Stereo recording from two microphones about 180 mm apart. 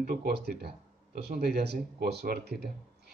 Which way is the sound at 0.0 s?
55° right (ahead or behind).